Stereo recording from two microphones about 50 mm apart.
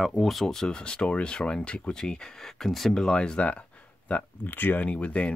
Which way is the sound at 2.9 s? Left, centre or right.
Centre.